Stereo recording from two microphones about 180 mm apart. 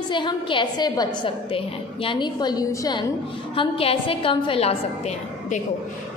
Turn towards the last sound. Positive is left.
turn(degrees=40)  # may be behind; listen again after turning